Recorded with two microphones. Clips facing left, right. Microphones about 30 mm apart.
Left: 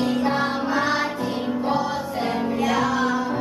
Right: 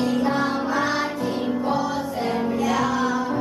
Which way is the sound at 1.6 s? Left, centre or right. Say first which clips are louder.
Even; left.